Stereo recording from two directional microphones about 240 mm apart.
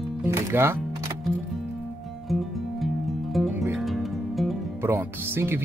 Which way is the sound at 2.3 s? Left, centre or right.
Centre.